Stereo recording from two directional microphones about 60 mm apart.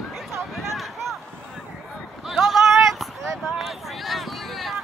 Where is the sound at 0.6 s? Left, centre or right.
Centre.